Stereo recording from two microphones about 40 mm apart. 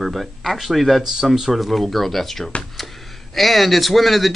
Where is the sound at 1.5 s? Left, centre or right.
Centre.